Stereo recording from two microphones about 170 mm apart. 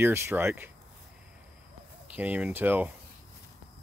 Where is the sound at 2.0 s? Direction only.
10° right (ahead or behind).